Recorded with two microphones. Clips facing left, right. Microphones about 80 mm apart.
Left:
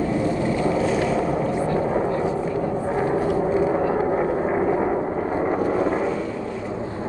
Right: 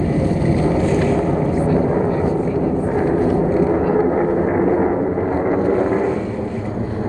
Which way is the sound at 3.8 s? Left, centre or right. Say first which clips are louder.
Right 5 dB; centre.